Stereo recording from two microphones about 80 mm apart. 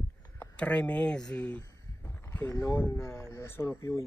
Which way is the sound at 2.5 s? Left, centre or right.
Left.